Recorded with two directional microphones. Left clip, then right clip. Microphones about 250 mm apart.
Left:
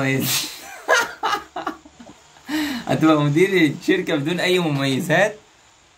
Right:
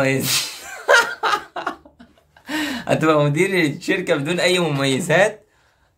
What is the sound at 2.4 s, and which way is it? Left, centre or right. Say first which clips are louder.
Speech: right 2 dB; centre.